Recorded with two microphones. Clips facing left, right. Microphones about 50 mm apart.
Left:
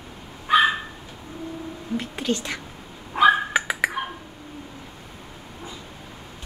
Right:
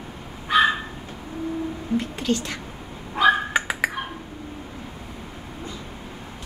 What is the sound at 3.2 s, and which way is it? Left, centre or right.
Dog, centre.